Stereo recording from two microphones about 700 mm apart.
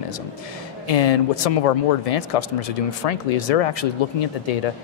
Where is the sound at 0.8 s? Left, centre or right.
Left.